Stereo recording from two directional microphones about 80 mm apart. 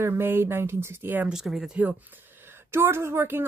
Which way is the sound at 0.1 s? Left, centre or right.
Right.